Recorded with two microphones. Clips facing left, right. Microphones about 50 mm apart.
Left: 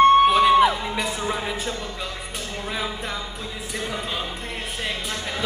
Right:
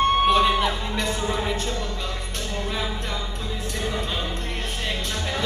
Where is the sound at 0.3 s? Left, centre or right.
Centre.